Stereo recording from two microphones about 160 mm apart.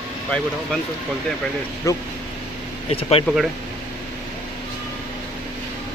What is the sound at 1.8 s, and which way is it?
Speech, 20° left (ahead or behind).